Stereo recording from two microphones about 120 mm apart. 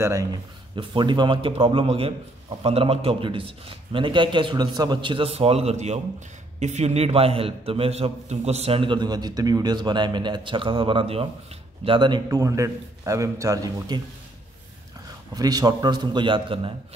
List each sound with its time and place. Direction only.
0.0 s a man's voice: 25° right (ahead or behind)
0.7 s a man's voice: 40° right (ahead or behind)
15.3 s a man's voice: 35° right (ahead or behind)